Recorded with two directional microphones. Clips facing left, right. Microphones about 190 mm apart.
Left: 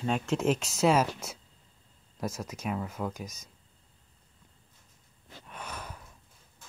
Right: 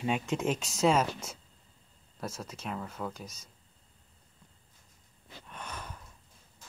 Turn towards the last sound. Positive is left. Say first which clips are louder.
# left 1 dB
turn(degrees=5)  # may be behind; listen again after turning